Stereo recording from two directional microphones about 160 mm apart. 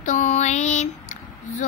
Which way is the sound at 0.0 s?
50° left (ahead or behind).